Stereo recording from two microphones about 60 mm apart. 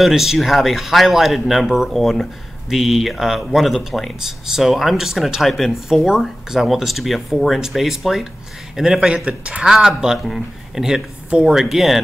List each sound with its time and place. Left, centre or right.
0.0 s a man's voice: centre
9.8 s a man's voice: centre